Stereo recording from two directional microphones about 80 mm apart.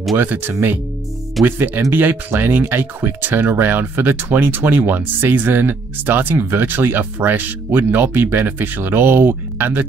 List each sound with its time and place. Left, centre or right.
0.2 s speech: right
1.4 s speech: centre
1.9 s speech: right